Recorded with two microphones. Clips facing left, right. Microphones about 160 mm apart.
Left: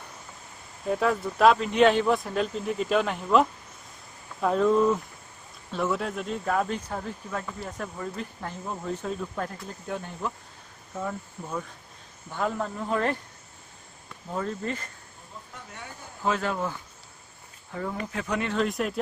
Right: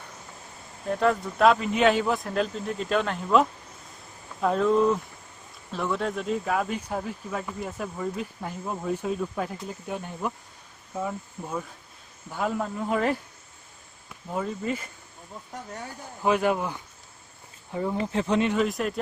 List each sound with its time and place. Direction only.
0.8 s a man's voice: 5° left (ahead or behind)
14.3 s speech: 5° right (ahead or behind)
16.3 s speech: 15° right (ahead or behind)
17.7 s speech: 20° right (ahead or behind)
18.5 s a man's voice: centre (ahead or behind)